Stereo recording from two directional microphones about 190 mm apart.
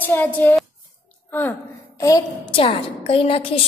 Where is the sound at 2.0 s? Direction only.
25° left (ahead or behind).